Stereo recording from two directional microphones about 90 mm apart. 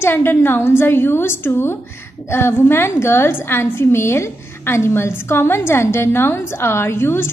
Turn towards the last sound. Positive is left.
turn(degrees=25)  # may be behind; listen again after turning